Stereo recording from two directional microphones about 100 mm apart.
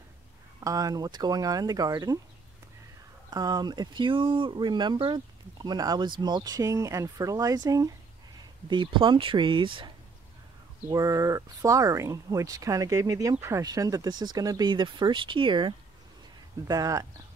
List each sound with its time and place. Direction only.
0.6 s speech: 35° right (ahead or behind)
3.3 s speech: 45° right (ahead or behind)
6.6 s speech: 30° right (ahead or behind)
8.6 s speech: 55° right (ahead or behind)
10.9 s speech: 35° right (ahead or behind)
14.7 s speech: 50° right (ahead or behind)
16.6 s speech: 35° right (ahead or behind)